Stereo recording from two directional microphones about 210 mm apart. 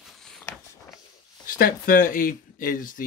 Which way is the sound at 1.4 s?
45° left (ahead or behind).